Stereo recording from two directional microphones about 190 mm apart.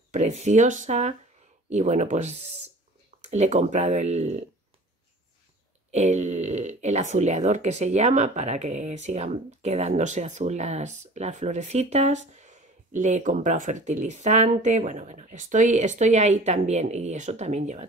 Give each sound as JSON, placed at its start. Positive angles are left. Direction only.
{"t": 0.1, "sound": "speech", "side_deg": -35}
{"t": 5.9, "sound": "speech", "side_deg": -40}